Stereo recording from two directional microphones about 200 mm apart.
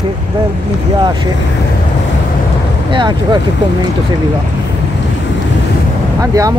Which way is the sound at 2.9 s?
20° right (ahead or behind).